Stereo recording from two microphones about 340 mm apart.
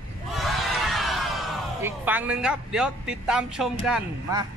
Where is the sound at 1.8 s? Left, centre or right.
Centre.